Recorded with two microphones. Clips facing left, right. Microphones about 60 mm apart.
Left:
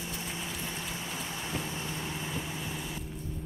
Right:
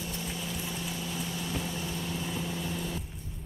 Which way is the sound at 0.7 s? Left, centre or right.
Left.